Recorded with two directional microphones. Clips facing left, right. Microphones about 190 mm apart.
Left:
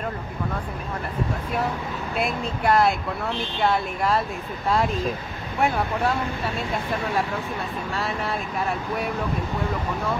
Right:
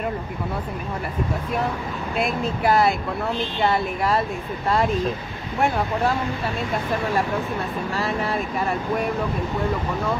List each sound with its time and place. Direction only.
2.1 s speech: centre (ahead or behind)
7.9 s speech: centre (ahead or behind)